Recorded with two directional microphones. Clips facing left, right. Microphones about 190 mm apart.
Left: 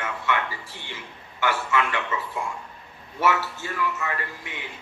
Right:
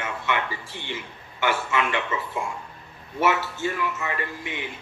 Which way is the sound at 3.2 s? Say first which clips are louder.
Right 1 dB; 20° right (ahead or behind).